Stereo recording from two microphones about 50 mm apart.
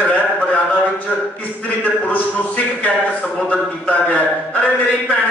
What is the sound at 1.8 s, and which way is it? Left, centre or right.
A man's voice, left.